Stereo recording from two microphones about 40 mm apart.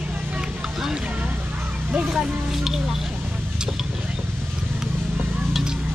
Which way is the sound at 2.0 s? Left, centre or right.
Centre.